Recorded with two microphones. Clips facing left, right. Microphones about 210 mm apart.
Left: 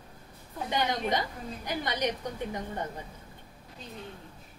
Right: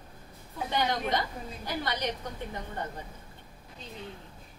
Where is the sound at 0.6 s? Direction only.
15° left (ahead or behind).